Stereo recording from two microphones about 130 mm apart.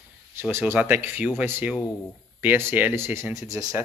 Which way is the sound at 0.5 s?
15° right (ahead or behind).